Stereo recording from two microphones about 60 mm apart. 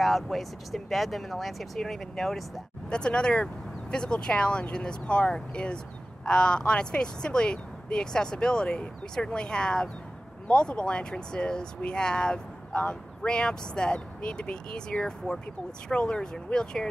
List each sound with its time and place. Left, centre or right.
0.0 s speech: centre
2.9 s speech: centre